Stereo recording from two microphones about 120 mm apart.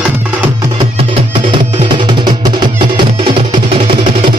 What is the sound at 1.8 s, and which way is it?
Music, 40° right (ahead or behind).